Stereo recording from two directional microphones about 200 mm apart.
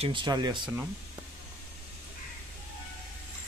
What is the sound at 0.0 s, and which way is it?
Speech, 25° right (ahead or behind).